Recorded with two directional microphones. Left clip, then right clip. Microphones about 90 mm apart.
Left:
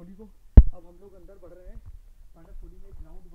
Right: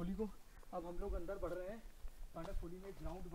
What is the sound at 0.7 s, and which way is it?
A man's voice, 40° right (ahead or behind).